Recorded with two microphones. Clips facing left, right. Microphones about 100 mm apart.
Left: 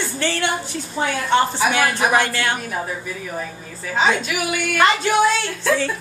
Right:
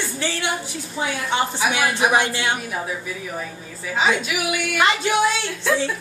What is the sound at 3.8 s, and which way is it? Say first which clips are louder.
A woman's voice: left 2 dB; 5° right (ahead or behind).